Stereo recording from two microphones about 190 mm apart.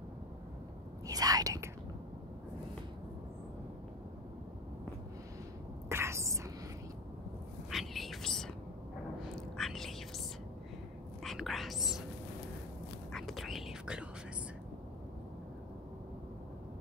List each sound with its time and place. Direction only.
1.0 s whispering: 20° right (ahead or behind)
5.9 s whispering: 15° right (ahead or behind)
7.7 s a sound: centre (ahead or behind)
9.2 s whispering: centre (ahead or behind)
11.2 s whispering: centre (ahead or behind)
13.1 s whispering: centre (ahead or behind)